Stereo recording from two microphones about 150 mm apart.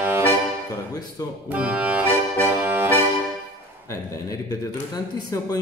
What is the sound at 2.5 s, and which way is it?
Music, 15° right (ahead or behind).